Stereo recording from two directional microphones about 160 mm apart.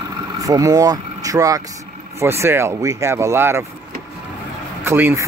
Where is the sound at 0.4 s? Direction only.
20° right (ahead or behind).